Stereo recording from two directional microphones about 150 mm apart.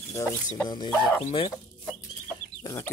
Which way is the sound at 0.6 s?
30° left (ahead or behind).